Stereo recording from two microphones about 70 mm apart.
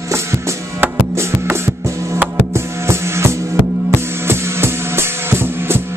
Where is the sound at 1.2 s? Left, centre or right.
Right.